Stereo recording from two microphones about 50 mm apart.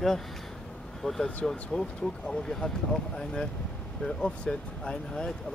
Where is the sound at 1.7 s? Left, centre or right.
Left.